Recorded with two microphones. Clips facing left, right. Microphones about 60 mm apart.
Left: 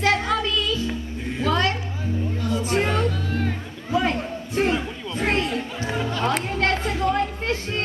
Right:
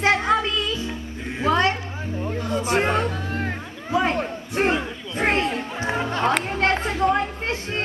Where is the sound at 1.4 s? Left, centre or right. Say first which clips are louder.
Right 2 dB; right.